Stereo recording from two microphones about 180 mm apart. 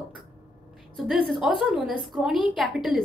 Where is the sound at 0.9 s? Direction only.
Centre (ahead or behind).